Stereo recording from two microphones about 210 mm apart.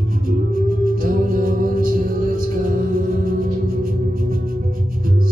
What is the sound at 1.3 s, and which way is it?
Music, 40° right (ahead or behind).